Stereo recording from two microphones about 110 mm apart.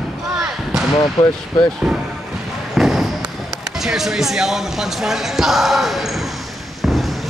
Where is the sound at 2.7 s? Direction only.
Centre (ahead or behind).